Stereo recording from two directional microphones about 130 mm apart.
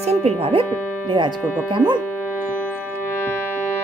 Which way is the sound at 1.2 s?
35° right (ahead or behind).